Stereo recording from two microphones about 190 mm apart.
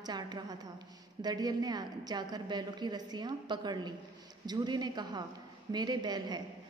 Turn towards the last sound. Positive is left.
turn(degrees=-20)  # may be behind; listen again after turning